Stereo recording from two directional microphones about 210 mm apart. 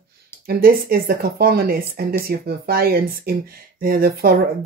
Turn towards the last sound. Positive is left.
turn(degrees=-45)  # may be behind; listen again after turning